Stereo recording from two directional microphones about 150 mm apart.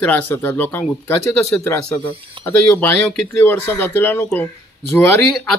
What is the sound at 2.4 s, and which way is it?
Speech, 10° left (ahead or behind).